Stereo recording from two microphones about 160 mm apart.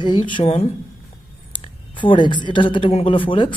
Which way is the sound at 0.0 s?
30° left (ahead or behind).